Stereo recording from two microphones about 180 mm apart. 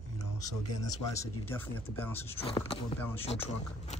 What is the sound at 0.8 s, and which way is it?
Speech, 15° left (ahead or behind).